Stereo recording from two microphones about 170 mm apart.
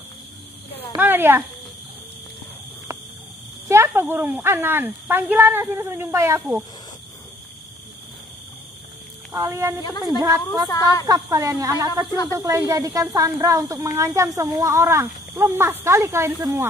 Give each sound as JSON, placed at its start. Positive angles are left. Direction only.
{"t": 0.9, "sound": "a sound", "side_deg": -10}
{"t": 3.6, "sound": "speech", "side_deg": -15}
{"t": 9.3, "sound": "speech", "side_deg": -20}